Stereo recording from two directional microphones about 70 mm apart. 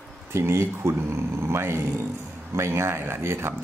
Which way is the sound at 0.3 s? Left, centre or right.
Right.